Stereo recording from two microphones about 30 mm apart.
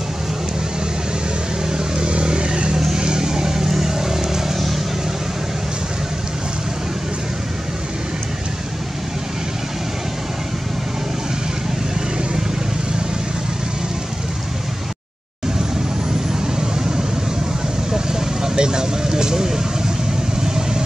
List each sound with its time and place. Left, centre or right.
1.7 s a sound: right
3.0 s vehicle: right
16.3 s vehicle: right